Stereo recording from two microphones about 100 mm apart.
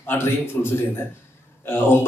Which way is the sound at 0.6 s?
15° left (ahead or behind).